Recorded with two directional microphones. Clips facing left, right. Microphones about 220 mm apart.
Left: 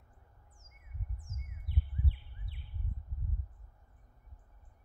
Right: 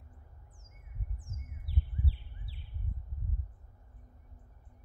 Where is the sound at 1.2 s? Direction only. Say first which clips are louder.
Right 1 dB; 30° right (ahead or behind).